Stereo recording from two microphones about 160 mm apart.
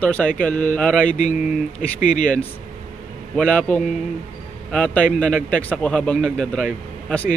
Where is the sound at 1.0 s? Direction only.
55° left (ahead or behind).